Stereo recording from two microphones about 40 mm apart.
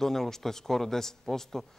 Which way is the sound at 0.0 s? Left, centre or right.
Centre.